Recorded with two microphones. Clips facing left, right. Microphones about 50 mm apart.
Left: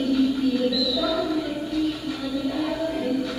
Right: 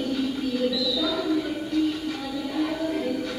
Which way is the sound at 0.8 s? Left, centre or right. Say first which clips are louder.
Left 2 dB; centre.